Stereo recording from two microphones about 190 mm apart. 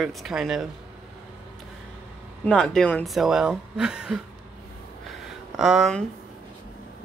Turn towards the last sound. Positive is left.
turn(degrees=0)  # may be behind; listen again after turning